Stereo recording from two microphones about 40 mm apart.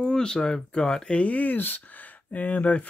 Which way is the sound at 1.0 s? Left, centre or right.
Left.